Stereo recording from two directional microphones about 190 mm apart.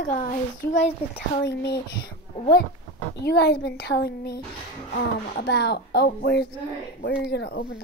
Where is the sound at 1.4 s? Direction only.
60° left (ahead or behind).